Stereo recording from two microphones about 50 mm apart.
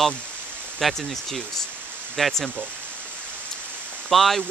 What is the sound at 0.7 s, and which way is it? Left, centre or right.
Speech, centre.